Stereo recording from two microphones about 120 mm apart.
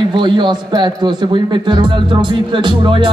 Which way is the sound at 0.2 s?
40° right (ahead or behind).